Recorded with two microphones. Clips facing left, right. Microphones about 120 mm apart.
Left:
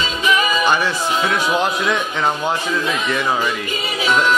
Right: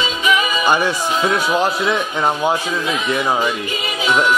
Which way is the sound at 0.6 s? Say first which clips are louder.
Right 1 dB; 15° right (ahead or behind).